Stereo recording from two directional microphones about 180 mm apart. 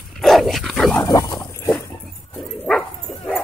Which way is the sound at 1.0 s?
20° left (ahead or behind).